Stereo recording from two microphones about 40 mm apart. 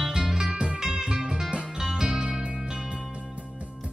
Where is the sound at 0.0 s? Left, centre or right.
Centre.